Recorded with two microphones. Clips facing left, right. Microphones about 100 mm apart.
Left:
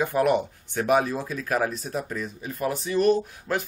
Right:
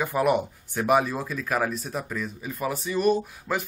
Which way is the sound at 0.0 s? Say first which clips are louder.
Left 1 dB; 5° right (ahead or behind).